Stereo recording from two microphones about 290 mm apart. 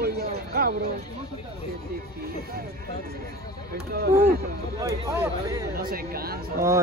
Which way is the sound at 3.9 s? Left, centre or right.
Right.